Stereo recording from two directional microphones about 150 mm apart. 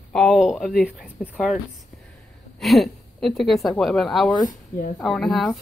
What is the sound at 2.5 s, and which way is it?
A woman's voice, centre (ahead or behind).